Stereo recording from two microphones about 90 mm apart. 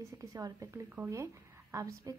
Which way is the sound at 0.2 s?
40° right (ahead or behind).